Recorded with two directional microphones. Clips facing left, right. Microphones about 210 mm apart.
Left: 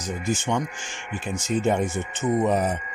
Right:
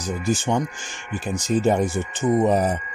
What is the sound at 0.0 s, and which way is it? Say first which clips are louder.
Speech: right 3 dB; 35° right (ahead or behind).